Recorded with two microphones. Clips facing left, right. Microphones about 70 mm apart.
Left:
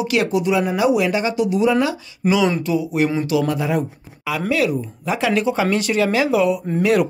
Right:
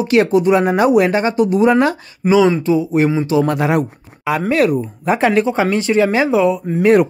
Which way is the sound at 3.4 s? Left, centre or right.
Right.